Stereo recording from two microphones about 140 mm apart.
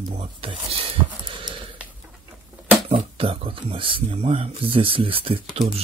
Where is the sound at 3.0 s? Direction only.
40° right (ahead or behind).